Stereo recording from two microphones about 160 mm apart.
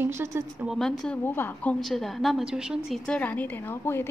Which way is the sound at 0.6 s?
5° left (ahead or behind).